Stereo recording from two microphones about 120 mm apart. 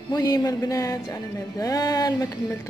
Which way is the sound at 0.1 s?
30° left (ahead or behind).